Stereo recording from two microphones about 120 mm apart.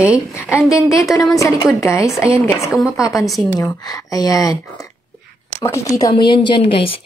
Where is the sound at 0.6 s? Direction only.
25° left (ahead or behind).